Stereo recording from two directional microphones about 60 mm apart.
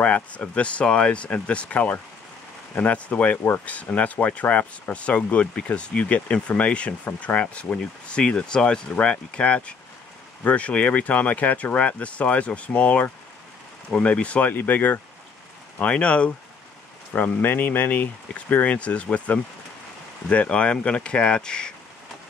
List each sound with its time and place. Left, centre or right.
0.0 s speech: left